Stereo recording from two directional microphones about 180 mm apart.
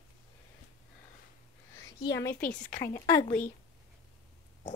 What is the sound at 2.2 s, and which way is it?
Speech, 10° left (ahead or behind).